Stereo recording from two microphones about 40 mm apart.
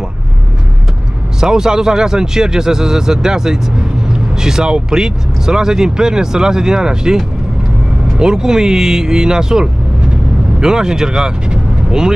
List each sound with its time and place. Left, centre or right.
1.4 s speech: centre
8.2 s speech: centre